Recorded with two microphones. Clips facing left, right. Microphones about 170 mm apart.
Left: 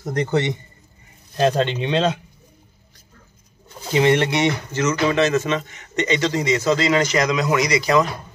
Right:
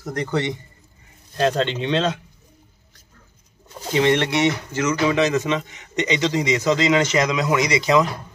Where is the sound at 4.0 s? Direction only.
5° left (ahead or behind); by 8.1 s 20° right (ahead or behind).